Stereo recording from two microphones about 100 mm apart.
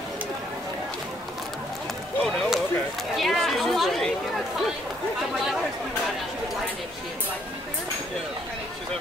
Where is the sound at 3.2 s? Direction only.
Centre (ahead or behind).